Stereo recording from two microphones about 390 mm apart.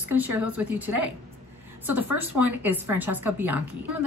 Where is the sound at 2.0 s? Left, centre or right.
Right.